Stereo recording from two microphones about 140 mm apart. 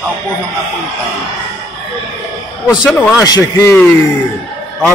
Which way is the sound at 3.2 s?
25° left (ahead or behind).